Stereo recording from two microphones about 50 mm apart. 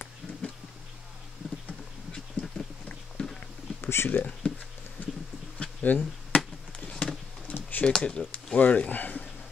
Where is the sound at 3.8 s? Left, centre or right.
Left.